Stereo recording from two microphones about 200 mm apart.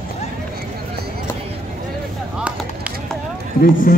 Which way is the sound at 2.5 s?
5° right (ahead or behind).